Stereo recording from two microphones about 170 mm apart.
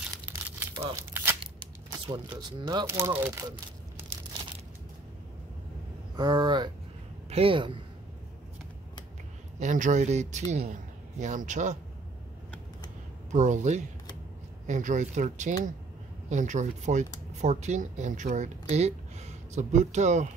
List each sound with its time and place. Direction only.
0.6 s tearing: 15° right (ahead or behind)
0.9 s a sound: 15° right (ahead or behind)
1.4 s speech: 30° right (ahead or behind); by 3.4 s 15° right (ahead or behind)
6.1 s speech: 25° right (ahead or behind)
9.6 s a man's voice: 45° right (ahead or behind)
13.3 s a man's voice: 45° right (ahead or behind)